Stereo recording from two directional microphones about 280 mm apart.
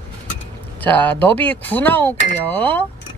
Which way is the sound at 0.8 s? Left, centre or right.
Centre.